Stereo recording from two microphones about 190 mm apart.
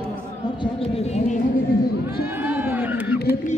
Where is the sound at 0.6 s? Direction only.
30° left (ahead or behind).